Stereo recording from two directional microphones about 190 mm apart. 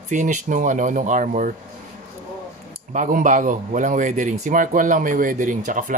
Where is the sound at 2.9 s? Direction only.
45° right (ahead or behind).